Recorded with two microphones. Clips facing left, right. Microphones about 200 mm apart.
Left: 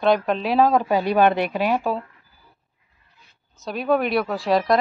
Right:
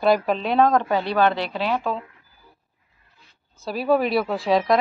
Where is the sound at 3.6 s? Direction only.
5° right (ahead or behind).